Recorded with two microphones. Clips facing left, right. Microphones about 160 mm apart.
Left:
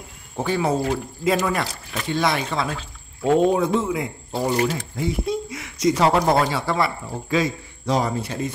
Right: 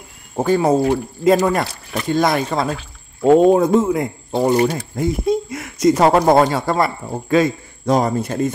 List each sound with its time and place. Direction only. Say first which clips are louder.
0.4 s speech: right 7 dB; 45° right (ahead or behind)